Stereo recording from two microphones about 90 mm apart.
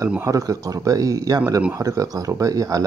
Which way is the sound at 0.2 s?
40° right (ahead or behind).